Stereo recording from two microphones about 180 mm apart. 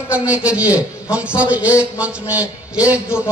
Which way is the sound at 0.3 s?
5° right (ahead or behind).